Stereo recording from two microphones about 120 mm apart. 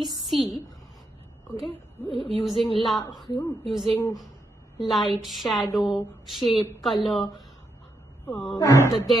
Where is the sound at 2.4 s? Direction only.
Centre (ahead or behind).